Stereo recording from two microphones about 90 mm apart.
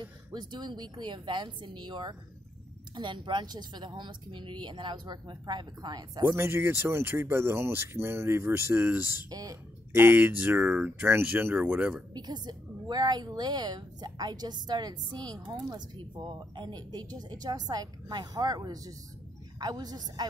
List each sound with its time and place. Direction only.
0.0 s a woman's voice: 55° right (ahead or behind)
6.2 s speech: 25° right (ahead or behind)
9.3 s a woman's voice: 45° right (ahead or behind)
9.9 s speech: 25° right (ahead or behind)
12.1 s a woman's voice: 50° right (ahead or behind)